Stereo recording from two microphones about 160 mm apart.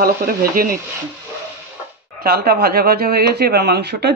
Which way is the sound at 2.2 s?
75° right (ahead or behind).